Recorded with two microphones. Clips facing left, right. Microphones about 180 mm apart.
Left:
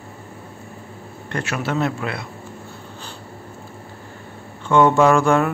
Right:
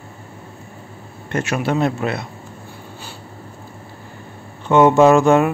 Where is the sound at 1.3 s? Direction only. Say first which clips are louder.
Right 4 dB; 15° right (ahead or behind).